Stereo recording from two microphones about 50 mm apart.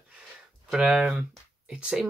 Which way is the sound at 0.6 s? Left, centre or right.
Centre.